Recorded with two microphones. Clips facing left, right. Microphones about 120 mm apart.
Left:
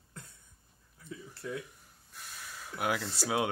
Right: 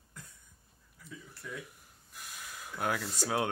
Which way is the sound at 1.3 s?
30° left (ahead or behind).